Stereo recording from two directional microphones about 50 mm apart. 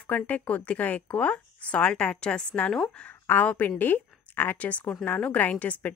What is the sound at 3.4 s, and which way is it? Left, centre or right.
Speech, left.